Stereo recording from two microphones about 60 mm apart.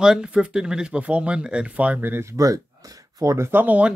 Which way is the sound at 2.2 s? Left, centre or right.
Right.